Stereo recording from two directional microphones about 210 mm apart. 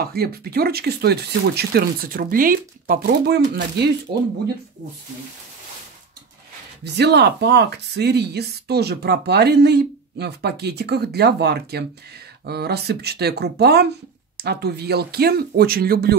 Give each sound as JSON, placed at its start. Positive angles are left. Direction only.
{"t": 0.0, "sound": "speech", "side_deg": -45}
{"t": 6.8, "sound": "speech", "side_deg": -55}